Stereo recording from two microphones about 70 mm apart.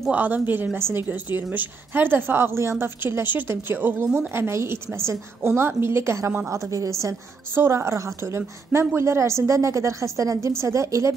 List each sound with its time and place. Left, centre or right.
0.1 s a woman's voice: right
1.0 s a woman's voice: right
4.3 s a woman's voice: right
7.5 s a woman's voice: right